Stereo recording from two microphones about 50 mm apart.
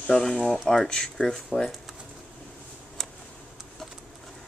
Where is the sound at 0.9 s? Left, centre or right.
Centre.